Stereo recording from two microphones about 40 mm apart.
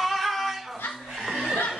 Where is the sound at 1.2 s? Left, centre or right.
Centre.